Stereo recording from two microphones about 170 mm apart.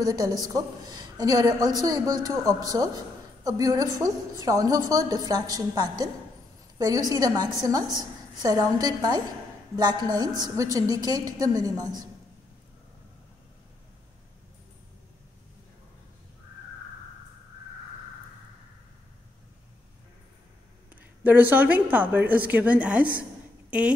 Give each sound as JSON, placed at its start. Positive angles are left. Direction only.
{"t": 0.0, "sound": "a woman's voice", "side_deg": -20}
{"t": 20.9, "sound": "a woman's voice", "side_deg": -10}